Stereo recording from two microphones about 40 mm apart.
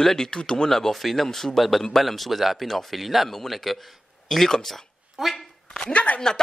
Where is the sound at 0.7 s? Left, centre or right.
Centre.